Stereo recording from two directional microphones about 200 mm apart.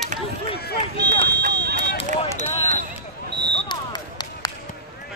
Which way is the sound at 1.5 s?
55° right (ahead or behind).